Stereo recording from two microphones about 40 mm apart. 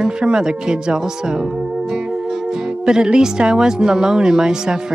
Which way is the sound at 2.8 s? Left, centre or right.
Centre.